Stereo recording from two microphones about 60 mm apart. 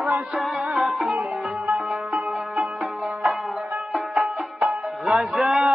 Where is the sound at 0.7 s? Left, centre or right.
Centre.